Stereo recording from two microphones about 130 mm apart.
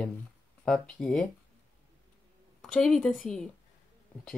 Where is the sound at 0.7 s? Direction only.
5° left (ahead or behind).